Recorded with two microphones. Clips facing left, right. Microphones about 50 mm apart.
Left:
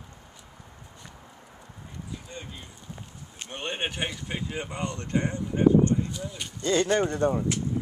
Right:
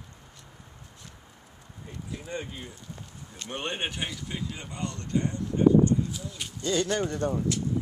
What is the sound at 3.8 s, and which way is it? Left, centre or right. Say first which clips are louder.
Speech: left 2 dB; centre.